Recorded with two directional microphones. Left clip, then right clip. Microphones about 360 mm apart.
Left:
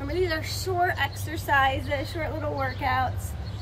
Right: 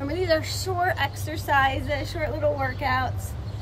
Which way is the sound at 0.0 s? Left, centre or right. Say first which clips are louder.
Right 4 dB; centre.